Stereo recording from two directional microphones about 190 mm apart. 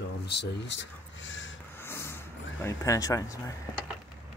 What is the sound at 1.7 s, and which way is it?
Vehicle, 10° left (ahead or behind).